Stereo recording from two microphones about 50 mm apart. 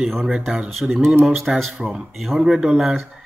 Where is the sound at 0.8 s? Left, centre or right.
Centre.